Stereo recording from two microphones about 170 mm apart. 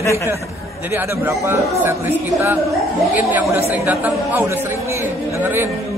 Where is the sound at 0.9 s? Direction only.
15° right (ahead or behind).